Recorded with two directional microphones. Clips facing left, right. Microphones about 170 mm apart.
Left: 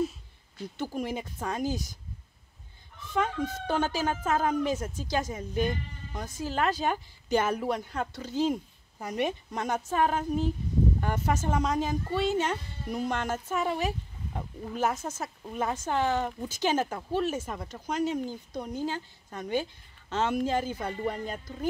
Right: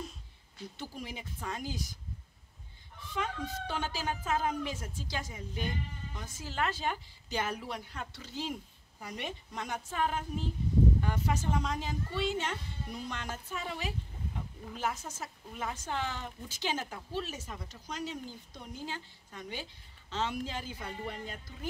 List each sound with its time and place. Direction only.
0.7 s speech: 50° left (ahead or behind)
3.1 s speech: 50° left (ahead or behind)
15.2 s speech: 55° left (ahead or behind)